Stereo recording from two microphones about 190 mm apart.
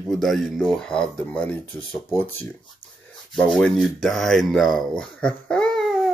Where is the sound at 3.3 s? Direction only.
5° left (ahead or behind).